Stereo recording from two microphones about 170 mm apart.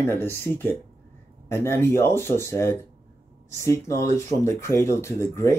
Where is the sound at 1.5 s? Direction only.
15° left (ahead or behind).